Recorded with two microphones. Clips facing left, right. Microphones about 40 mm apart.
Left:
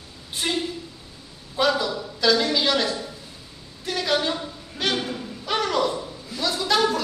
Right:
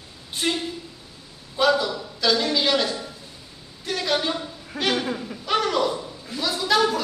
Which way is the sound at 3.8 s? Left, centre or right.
Centre.